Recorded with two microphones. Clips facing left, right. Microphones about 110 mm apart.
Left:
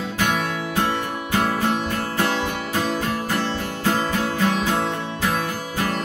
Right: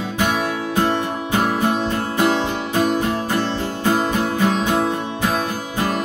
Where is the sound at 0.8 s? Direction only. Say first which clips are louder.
Right 4 dB; 20° right (ahead or behind).